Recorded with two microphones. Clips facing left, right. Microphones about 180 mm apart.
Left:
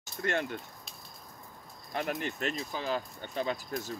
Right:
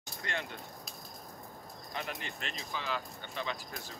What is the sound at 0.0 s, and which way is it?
Speech, 45° left (ahead or behind).